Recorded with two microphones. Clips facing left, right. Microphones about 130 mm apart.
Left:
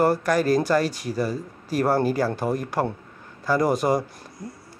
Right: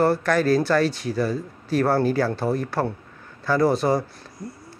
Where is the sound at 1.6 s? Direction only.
10° left (ahead or behind).